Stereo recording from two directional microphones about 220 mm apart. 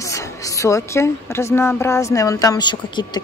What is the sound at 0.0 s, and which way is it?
A woman's voice, 15° left (ahead or behind).